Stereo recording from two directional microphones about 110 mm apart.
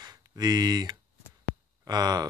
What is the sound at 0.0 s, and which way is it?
Speech, 35° right (ahead or behind).